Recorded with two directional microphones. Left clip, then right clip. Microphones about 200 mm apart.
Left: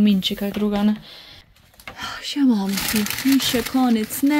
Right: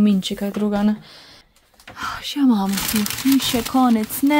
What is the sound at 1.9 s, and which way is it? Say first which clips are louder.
Speech: right 1 dB; 15° right (ahead or behind).